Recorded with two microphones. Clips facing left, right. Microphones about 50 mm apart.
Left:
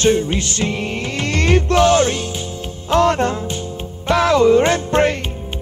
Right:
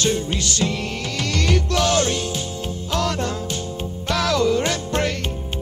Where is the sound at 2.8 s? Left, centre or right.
Left.